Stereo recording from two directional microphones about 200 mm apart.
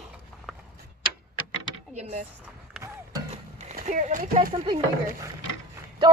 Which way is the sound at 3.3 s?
35° right (ahead or behind).